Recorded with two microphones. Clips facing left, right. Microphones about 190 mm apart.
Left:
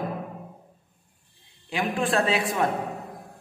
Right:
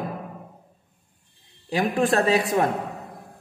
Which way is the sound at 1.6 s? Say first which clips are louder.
Right 4 dB; 40° right (ahead or behind).